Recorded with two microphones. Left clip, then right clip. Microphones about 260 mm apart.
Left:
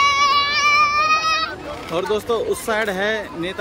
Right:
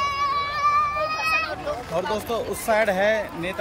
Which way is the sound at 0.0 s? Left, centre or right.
Left.